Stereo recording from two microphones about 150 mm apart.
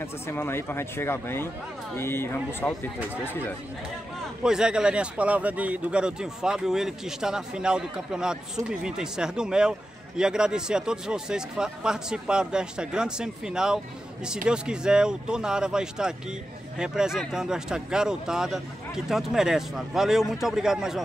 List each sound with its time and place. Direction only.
0.0 s speech: 15° left (ahead or behind)
4.4 s speech: 5° right (ahead or behind)